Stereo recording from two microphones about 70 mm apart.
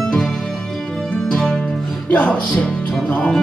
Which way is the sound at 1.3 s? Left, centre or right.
Centre.